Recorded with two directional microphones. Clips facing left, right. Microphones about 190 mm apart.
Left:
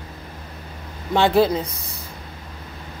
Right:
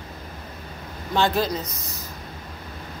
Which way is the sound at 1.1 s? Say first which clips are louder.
Left 6 dB; 75° left (ahead or behind).